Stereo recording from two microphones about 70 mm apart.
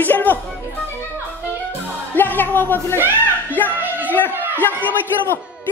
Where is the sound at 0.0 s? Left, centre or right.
Left.